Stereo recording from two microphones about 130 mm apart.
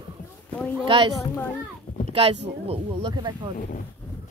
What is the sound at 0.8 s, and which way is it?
Speech, 40° right (ahead or behind).